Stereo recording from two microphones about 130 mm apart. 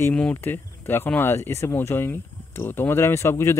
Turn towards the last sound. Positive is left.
turn(degrees=20)  # may be behind; listen again after turning